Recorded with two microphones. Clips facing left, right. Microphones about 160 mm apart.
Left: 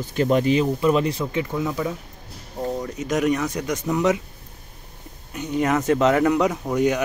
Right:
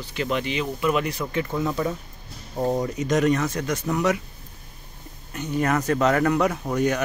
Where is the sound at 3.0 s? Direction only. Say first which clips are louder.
Left 1 dB; 10° left (ahead or behind).